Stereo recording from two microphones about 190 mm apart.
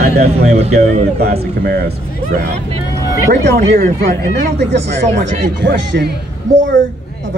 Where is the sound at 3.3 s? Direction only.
55° right (ahead or behind).